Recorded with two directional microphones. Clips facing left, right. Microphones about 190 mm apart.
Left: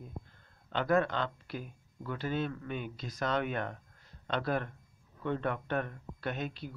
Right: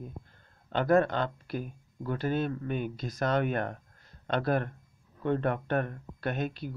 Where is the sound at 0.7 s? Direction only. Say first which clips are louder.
Right 4 dB; 45° right (ahead or behind).